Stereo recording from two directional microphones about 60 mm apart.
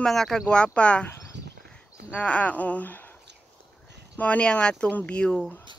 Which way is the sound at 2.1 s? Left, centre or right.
Left.